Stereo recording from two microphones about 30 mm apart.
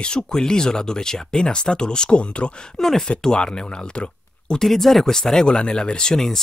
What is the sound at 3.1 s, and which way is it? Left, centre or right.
Speech, left.